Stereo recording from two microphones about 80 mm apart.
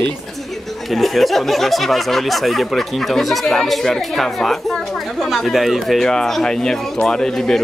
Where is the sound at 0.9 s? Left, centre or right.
Centre.